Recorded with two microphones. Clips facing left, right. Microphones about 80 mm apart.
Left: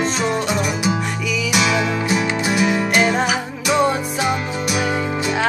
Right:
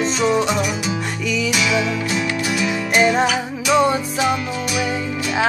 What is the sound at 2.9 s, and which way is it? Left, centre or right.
Music, centre.